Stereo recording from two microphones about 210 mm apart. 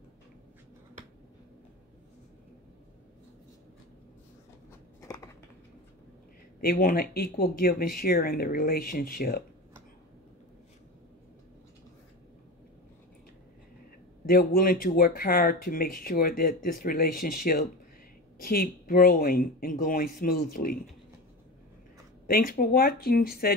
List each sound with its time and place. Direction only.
5.0 s a sound: 15° left (ahead or behind)
6.6 s speech: 45° left (ahead or behind)
14.2 s speech: 45° left (ahead or behind)
22.2 s speech: 45° left (ahead or behind)